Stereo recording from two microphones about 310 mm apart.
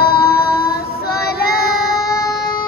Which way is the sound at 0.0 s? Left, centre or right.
Left.